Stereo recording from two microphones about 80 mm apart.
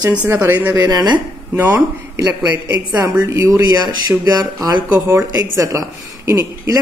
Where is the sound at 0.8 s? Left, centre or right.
Right.